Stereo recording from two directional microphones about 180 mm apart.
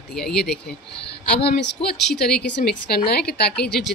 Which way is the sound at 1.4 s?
65° left (ahead or behind).